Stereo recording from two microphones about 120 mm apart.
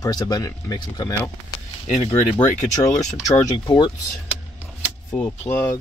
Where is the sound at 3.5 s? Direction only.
40° left (ahead or behind).